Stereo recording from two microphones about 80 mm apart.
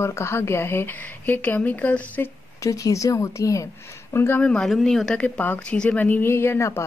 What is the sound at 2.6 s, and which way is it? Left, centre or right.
Speech, left.